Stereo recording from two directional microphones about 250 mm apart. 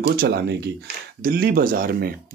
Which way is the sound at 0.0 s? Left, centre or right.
Right.